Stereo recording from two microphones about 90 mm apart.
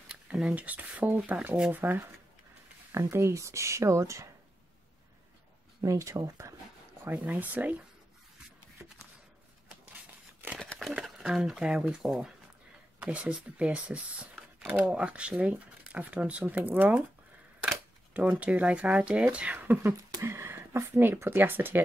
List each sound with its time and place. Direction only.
0.1 s speech: 10° right (ahead or behind); by 4.3 s 35° right (ahead or behind)
5.8 s speech: 35° right (ahead or behind)
7.1 s speech: 20° right (ahead or behind)
10.6 s crumpling: 5° left (ahead or behind)
10.9 s speech: 5° right (ahead or behind)
17.6 s camera: 15° right (ahead or behind)
18.4 s speech: 15° right (ahead or behind)
20.2 s a sound: 30° right (ahead or behind)
21.0 s speech: 25° right (ahead or behind)